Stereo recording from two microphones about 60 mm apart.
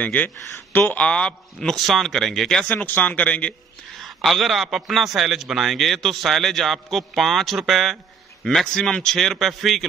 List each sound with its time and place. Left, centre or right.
0.0 s speech: left
1.0 s a man's voice: centre
1.8 s a man's voice: centre
2.7 s speech: left
4.0 s a man's voice: centre